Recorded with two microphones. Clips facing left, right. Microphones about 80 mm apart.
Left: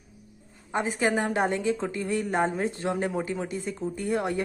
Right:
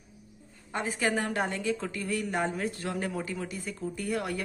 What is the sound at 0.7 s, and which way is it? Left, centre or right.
A woman's voice, left.